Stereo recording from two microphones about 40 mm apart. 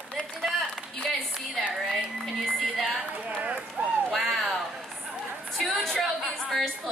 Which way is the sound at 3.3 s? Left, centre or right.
Right.